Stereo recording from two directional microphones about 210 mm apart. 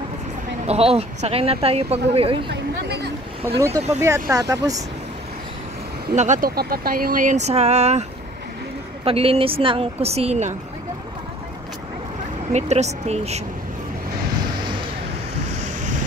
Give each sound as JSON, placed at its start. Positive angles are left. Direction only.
{"t": 0.7, "sound": "speech", "side_deg": -30}
{"t": 2.5, "sound": "a sound", "side_deg": -50}
{"t": 3.4, "sound": "speech", "side_deg": -15}
{"t": 6.1, "sound": "speech", "side_deg": -35}
{"t": 9.0, "sound": "speech", "side_deg": -30}
{"t": 12.5, "sound": "speech", "side_deg": -30}
{"t": 15.4, "sound": "waves", "side_deg": -35}